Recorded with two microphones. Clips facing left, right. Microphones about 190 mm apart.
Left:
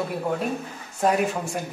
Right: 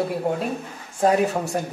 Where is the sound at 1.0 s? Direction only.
35° right (ahead or behind).